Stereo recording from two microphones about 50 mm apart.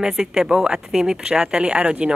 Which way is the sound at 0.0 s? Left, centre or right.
Centre.